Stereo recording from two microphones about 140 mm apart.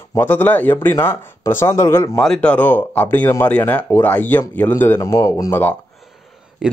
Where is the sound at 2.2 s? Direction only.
5° left (ahead or behind).